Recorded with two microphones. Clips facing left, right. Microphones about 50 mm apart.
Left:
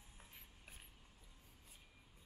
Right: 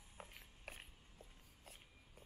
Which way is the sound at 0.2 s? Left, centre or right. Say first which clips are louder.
Right 8 dB; right.